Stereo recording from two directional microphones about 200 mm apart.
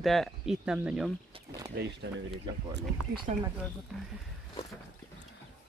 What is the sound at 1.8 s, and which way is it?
Speech, 60° right (ahead or behind).